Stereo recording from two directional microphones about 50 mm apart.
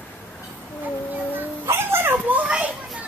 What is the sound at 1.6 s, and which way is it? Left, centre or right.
Dog, right.